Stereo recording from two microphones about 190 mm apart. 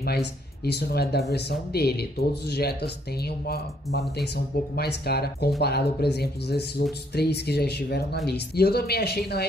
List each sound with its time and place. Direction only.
0.0 s speech: 60° left (ahead or behind)